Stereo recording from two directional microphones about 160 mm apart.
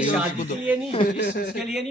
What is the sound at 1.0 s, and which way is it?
Speech, 90° left.